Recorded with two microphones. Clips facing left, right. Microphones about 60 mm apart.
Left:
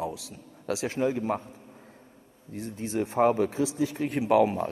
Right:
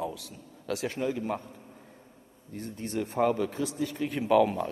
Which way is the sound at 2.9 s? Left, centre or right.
Left.